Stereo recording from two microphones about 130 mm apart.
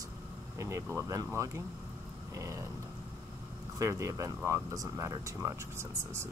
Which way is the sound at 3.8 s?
25° right (ahead or behind).